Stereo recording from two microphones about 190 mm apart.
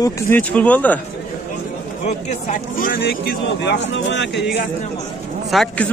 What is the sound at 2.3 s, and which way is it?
Speech, 45° left (ahead or behind).